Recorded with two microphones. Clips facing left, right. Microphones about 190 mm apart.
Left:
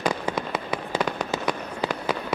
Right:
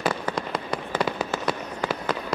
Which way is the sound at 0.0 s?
5° left (ahead or behind).